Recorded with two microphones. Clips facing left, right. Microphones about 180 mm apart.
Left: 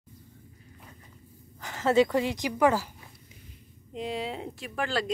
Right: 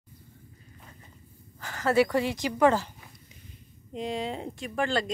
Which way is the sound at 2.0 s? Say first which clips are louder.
Even; 15° left (ahead or behind).